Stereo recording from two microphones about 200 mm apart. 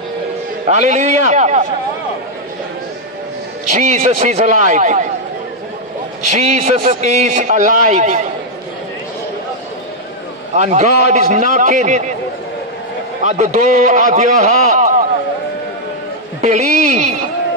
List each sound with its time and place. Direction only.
0.7 s a man's voice: 35° right (ahead or behind)
3.7 s a man's voice: 40° right (ahead or behind)
6.3 s a man's voice: 35° right (ahead or behind)
10.5 s a man's voice: 35° right (ahead or behind)
13.2 s a man's voice: 35° right (ahead or behind)
16.3 s a sound: 35° right (ahead or behind)